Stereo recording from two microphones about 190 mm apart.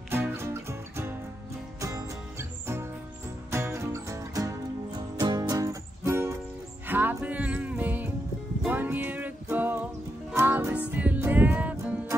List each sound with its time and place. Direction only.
0.1 s music: 10° right (ahead or behind)